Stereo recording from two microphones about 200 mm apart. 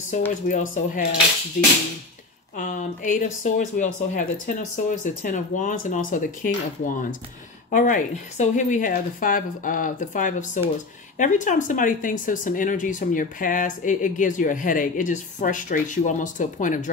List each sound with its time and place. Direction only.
0.5 s speech: 40° left (ahead or behind)